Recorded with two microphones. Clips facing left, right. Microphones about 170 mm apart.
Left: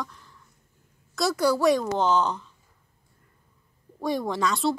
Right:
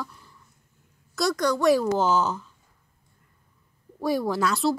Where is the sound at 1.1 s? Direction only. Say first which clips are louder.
Left 1 dB; 5° left (ahead or behind).